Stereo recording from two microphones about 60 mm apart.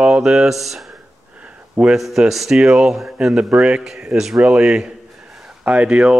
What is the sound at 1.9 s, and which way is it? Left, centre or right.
Speech, centre.